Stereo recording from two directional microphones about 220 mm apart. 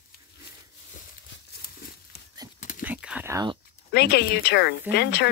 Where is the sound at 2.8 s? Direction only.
5° right (ahead or behind).